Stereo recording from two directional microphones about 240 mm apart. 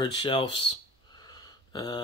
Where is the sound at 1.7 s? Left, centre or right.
Centre.